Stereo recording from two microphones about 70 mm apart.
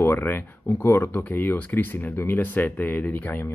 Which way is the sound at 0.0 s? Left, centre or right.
Left.